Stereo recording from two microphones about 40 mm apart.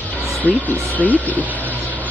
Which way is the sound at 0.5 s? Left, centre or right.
Left.